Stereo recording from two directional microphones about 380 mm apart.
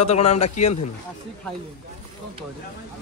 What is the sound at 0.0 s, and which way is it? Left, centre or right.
Speech, centre.